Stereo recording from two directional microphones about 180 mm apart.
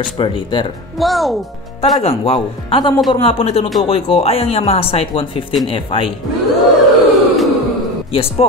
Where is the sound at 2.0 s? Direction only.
30° left (ahead or behind).